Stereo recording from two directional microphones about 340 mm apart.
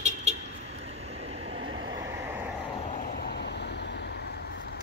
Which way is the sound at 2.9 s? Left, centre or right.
Left.